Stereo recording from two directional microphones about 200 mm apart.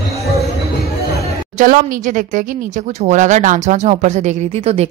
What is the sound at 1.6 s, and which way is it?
Speech, 40° right (ahead or behind).